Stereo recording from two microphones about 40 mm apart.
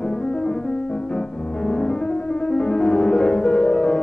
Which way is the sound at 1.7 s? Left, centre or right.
Left.